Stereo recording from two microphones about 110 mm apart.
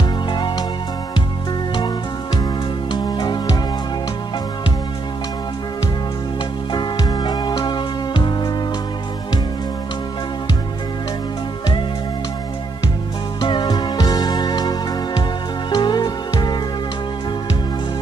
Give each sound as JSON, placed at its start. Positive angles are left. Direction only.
{"t": 0.3, "sound": "music", "side_deg": 45}
{"t": 2.9, "sound": "music", "side_deg": 45}
{"t": 6.7, "sound": "music", "side_deg": 40}
{"t": 13.4, "sound": "music", "side_deg": 45}